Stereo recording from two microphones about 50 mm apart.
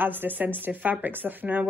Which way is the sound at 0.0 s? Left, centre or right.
Right.